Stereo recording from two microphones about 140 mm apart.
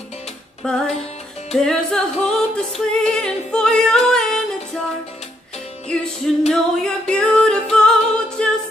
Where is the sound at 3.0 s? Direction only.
5° left (ahead or behind).